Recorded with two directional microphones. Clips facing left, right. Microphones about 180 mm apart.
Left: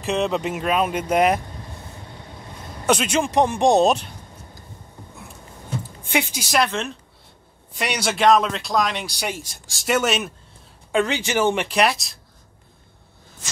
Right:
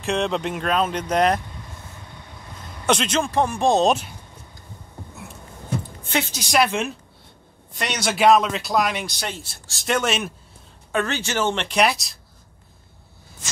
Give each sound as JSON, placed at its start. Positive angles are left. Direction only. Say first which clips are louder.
{"t": 0.0, "sound": "speech", "louder": "left 1 dB", "side_deg": 0}
{"t": 2.9, "sound": "speech", "louder": "left 1 dB", "side_deg": 10}
{"t": 3.8, "sound": "speech", "louder": "left 1 dB", "side_deg": 0}
{"t": 6.0, "sound": "speech", "louder": "left 3 dB", "side_deg": 15}
{"t": 6.7, "sound": "speech", "louder": "right 2 dB", "side_deg": -10}
{"t": 7.7, "sound": "speech", "louder": "left 1 dB", "side_deg": 5}
{"t": 9.0, "sound": "speech", "louder": "left 2 dB", "side_deg": 10}
{"t": 10.9, "sound": "speech", "louder": "left 3 dB", "side_deg": 15}